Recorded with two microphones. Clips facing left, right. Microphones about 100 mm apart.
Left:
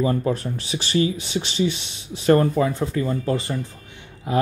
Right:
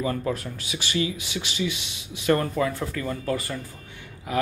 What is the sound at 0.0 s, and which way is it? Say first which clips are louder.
Speech: left 5 dB; 30° left (ahead or behind).